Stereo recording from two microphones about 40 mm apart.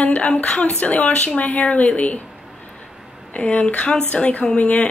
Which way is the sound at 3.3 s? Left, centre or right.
Left.